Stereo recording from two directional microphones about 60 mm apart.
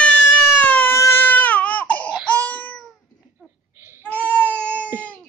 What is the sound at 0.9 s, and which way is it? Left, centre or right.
Baby cry, left.